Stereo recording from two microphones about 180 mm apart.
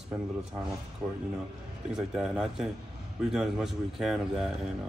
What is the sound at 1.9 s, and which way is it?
Speech, 5° right (ahead or behind).